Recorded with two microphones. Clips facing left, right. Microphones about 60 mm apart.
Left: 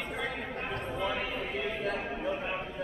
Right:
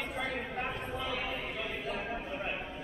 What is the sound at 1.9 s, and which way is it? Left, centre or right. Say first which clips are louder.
Chatter: left 1 dB; centre.